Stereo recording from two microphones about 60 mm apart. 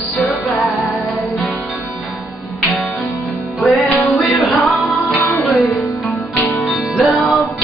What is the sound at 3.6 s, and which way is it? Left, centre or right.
Music, centre.